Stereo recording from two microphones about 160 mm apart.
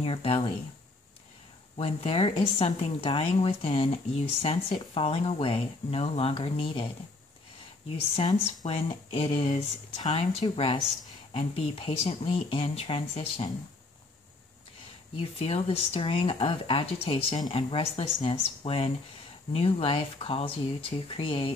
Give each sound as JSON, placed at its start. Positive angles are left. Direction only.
{"t": 0.0, "sound": "speech", "side_deg": 35}
{"t": 1.8, "sound": "speech", "side_deg": 35}
{"t": 8.3, "sound": "speech", "side_deg": 35}
{"t": 15.1, "sound": "speech", "side_deg": 35}